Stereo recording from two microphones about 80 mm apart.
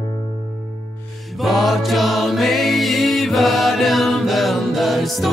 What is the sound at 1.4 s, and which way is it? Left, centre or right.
Music, centre.